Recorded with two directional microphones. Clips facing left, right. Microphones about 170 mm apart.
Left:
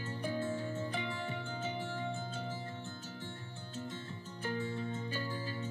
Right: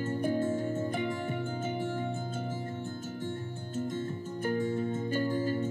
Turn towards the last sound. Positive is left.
turn(degrees=-50)  # may be behind; listen again after turning